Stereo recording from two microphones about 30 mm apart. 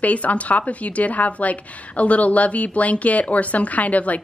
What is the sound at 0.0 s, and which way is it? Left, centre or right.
A woman's voice, left.